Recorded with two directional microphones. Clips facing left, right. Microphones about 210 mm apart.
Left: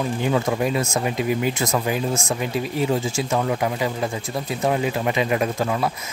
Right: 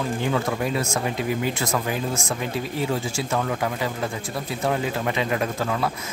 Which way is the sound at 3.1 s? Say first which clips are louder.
Left 3 dB; 20° left (ahead or behind).